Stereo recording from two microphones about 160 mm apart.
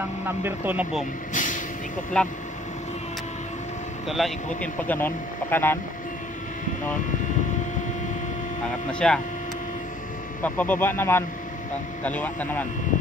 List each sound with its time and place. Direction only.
0.4 s speech: 10° right (ahead or behind)
1.3 s vehicle: 55° left (ahead or behind)
2.1 s speech: 5° left (ahead or behind)
4.1 s speech: 5° left (ahead or behind)
9.0 s speech: 5° left (ahead or behind)
10.4 s speech: 10° left (ahead or behind)